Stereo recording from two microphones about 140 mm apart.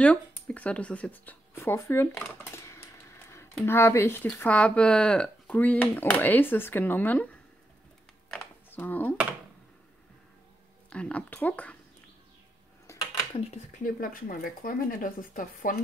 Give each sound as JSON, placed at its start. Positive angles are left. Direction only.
{"t": 0.0, "sound": "speech", "side_deg": 10}
{"t": 2.5, "sound": "a sound", "side_deg": 20}
{"t": 3.6, "sound": "speech", "side_deg": 15}
{"t": 8.6, "sound": "speech", "side_deg": 15}
{"t": 10.9, "sound": "speech", "side_deg": 10}
{"t": 13.3, "sound": "speech", "side_deg": 45}
{"t": 13.8, "sound": "speech", "side_deg": 80}